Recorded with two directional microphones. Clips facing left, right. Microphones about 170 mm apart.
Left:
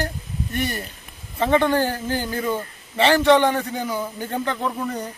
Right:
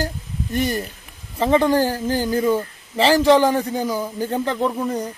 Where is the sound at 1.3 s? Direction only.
30° right (ahead or behind).